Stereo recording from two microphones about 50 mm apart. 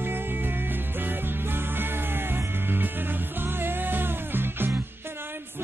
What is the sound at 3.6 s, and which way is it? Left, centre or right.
Music, right.